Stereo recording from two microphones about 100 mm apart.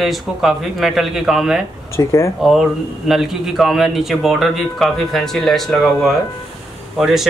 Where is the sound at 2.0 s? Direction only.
30° left (ahead or behind).